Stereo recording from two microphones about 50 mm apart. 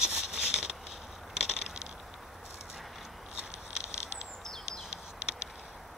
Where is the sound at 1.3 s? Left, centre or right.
Centre.